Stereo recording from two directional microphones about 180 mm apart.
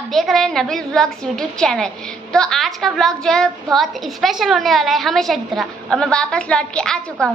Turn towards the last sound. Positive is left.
turn(degrees=5)  # may be behind; listen again after turning